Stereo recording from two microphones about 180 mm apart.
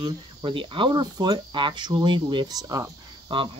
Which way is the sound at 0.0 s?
25° right (ahead or behind).